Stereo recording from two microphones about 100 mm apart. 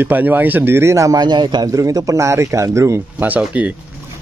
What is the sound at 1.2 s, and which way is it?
Speech, 45° right (ahead or behind).